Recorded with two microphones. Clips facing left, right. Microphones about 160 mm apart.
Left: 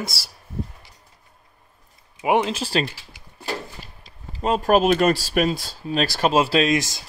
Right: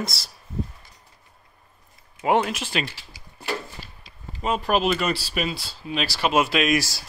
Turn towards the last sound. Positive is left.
turn(degrees=20)  # may be behind; listen again after turning